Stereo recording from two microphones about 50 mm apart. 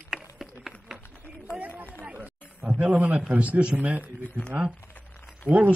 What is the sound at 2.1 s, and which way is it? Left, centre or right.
A man's voice, right.